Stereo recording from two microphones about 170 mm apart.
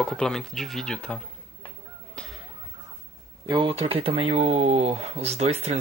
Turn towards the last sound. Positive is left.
turn(degrees=-40)  # may be behind; listen again after turning